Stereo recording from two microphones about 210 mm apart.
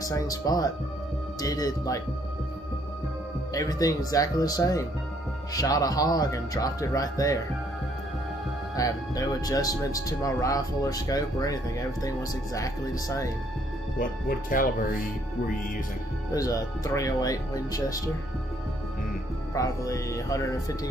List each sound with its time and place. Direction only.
0.0 s speech: 15° left (ahead or behind)
3.5 s speech: 15° left (ahead or behind)
8.7 s speech: 15° left (ahead or behind)
14.5 s speech: 40° left (ahead or behind)
16.3 s speech: 15° left (ahead or behind)
19.5 s speech: 15° left (ahead or behind)